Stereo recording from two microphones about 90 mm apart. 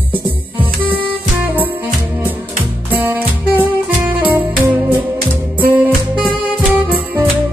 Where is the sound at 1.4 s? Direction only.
20° right (ahead or behind).